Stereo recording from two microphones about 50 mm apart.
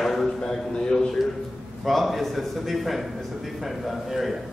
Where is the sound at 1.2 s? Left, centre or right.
Centre.